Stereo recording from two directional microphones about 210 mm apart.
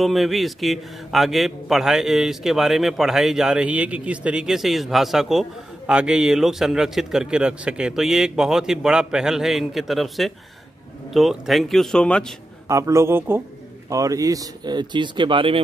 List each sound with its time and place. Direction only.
0.0 s a man's voice: centre (ahead or behind)
12.6 s a man's voice: 15° right (ahead or behind)